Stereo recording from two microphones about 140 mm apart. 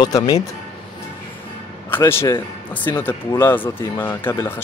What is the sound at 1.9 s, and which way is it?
Speech, 15° left (ahead or behind).